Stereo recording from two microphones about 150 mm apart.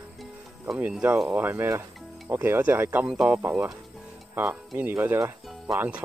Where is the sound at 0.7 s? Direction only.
5° right (ahead or behind).